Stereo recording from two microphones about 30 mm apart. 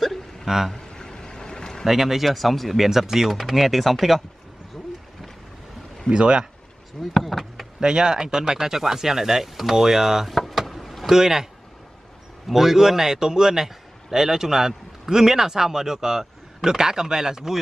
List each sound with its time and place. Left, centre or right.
0.0 s hiccup: centre
0.7 s a sound: left
1.9 s speech: centre
2.8 s speech: centre
6.0 s speech: right
7.0 s a sound: centre
7.8 s speech: right; by 10.3 s centre
10.5 s vehicle: centre
11.1 s speech: centre
12.4 s a man's voice: centre